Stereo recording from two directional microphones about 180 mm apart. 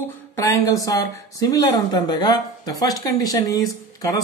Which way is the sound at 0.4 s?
20° left (ahead or behind).